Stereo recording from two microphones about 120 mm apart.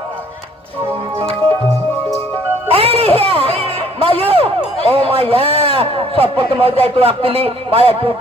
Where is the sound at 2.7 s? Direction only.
55° right (ahead or behind).